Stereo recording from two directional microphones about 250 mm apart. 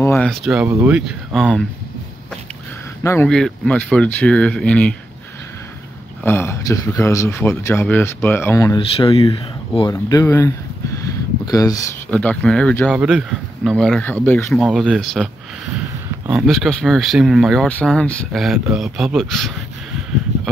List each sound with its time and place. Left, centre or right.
0.0 s speech: centre
3.0 s speech: centre
6.2 s speech: centre
8.9 s speech: left; by 15.2 s centre
16.3 s speech: centre